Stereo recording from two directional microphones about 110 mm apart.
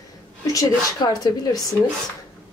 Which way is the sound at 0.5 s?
40° left (ahead or behind).